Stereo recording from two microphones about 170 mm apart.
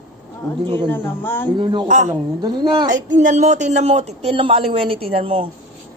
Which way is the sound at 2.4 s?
25° right (ahead or behind).